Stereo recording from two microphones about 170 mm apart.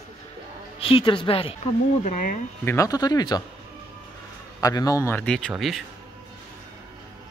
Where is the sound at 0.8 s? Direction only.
35° left (ahead or behind).